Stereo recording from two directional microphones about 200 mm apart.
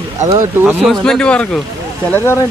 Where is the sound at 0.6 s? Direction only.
10° right (ahead or behind).